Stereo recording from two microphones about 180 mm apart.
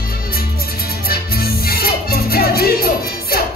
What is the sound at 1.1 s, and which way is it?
Music, 55° left (ahead or behind).